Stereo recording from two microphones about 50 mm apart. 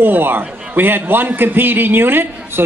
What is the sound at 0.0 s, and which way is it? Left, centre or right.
A man's voice, right.